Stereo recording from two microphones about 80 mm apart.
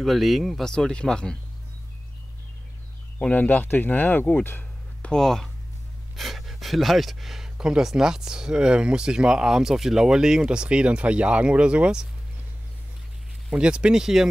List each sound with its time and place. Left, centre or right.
0.0 s speech: centre
3.2 s speech: centre
5.1 s speech: centre
13.5 s speech: centre